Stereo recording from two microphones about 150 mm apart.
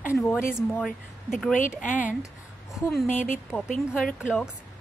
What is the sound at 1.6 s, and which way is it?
Speech, 60° left (ahead or behind).